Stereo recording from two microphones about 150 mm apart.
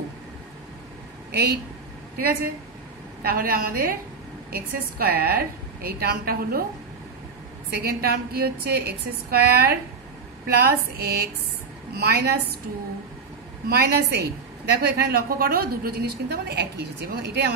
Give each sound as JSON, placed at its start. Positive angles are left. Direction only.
{"t": 2.1, "sound": "a woman's voice", "side_deg": -90}
{"t": 4.5, "sound": "a woman's voice", "side_deg": -90}
{"t": 7.7, "sound": "a woman's voice", "side_deg": -90}
{"t": 13.7, "sound": "a woman's voice", "side_deg": -90}